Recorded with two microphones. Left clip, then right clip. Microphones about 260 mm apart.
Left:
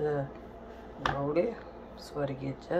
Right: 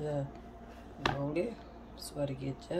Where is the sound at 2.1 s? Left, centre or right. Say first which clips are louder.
Left 3 dB; centre.